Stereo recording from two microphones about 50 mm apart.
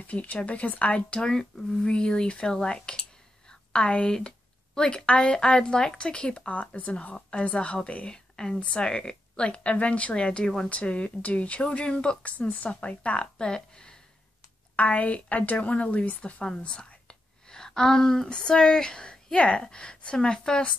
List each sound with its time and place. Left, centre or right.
0.0 s speech: left; by 10.7 s centre
10.7 s speech: left
12.3 s speech: left
14.8 s a woman's voice: left